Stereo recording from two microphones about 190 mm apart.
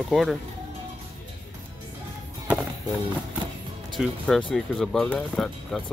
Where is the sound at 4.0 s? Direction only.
5° left (ahead or behind).